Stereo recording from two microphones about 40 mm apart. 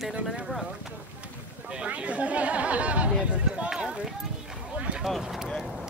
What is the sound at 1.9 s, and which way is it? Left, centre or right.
Speech, right.